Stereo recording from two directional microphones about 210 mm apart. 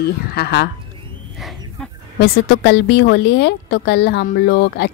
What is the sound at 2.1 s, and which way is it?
Speech, 50° left (ahead or behind).